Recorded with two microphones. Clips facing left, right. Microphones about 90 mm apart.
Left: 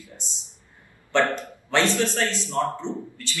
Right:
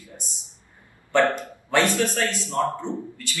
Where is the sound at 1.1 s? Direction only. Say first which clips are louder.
Right 2 dB; 15° right (ahead or behind).